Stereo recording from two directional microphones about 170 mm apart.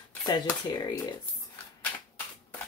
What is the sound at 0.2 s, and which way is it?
Speech, 25° left (ahead or behind).